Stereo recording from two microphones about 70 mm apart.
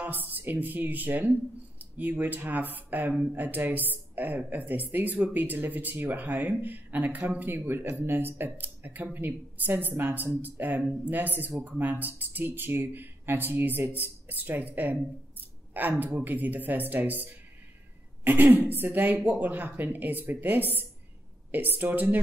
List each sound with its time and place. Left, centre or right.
0.0 s speech: right